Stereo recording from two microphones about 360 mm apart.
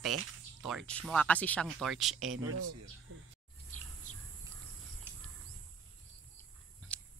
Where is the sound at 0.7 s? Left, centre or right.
Centre.